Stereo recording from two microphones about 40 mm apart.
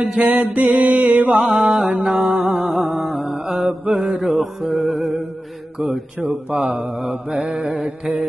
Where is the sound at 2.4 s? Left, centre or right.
Centre.